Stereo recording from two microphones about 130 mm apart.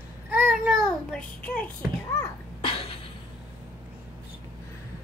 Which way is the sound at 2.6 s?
45° left (ahead or behind).